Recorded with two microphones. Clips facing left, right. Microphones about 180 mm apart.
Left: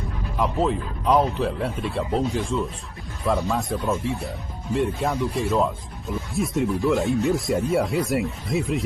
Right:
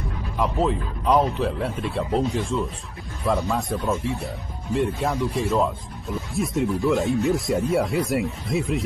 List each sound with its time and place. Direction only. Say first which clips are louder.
0.4 s speech: even; centre (ahead or behind)